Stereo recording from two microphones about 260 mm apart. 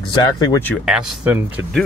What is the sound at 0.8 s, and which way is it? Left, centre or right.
Speech, centre.